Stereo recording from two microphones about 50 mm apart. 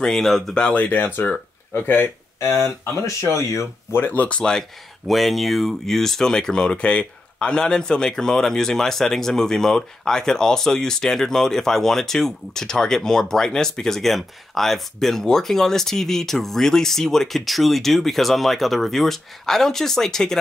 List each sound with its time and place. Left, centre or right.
0.0 s speech: centre
0.7 s speech: left
1.7 s speech: left
2.4 s speech: left
4.1 s speech: left
4.4 s speech: centre
5.0 s speech: centre